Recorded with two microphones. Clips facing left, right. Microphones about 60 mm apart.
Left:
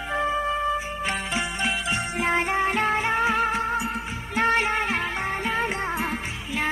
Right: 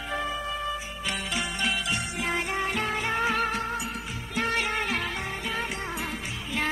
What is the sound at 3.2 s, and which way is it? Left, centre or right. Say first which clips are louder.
Music: left 4 dB; centre.